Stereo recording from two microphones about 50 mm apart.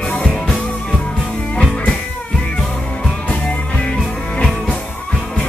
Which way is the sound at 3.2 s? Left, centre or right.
Left.